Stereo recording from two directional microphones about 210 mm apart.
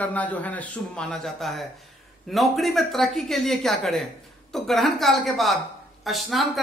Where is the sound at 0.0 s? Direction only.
5° left (ahead or behind).